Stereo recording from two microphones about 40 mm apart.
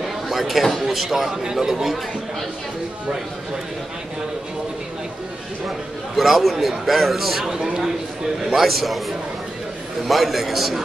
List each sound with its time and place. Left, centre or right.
0.3 s speech: centre
6.1 s a man's voice: centre
7.5 s speech: centre
8.6 s a man's voice: centre
10.0 s a man's voice: centre